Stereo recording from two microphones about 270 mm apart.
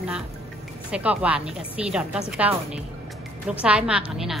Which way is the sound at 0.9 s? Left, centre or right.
Centre.